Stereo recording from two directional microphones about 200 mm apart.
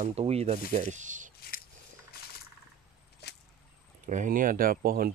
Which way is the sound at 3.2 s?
55° left (ahead or behind).